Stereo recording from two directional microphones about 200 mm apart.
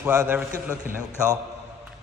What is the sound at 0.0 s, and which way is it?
Speech, 10° right (ahead or behind).